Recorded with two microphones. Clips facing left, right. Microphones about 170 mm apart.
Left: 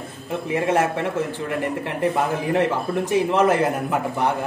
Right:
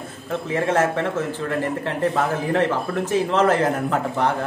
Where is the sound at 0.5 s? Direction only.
15° left (ahead or behind).